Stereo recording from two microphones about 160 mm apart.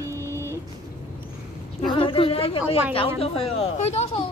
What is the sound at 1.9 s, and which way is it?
A woman's voice, 35° left (ahead or behind).